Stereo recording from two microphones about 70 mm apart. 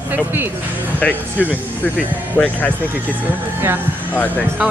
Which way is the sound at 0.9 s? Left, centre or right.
Left.